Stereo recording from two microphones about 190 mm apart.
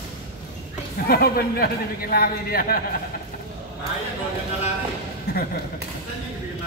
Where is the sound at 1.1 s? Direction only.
50° left (ahead or behind).